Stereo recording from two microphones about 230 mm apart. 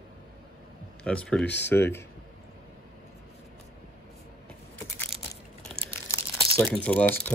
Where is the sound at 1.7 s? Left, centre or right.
Centre.